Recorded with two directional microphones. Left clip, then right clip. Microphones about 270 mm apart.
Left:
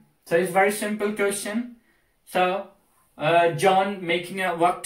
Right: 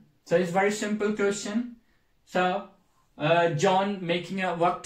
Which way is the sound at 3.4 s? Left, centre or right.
Centre.